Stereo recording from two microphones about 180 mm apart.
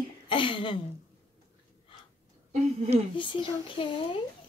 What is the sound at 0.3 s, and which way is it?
Speech, 30° left (ahead or behind).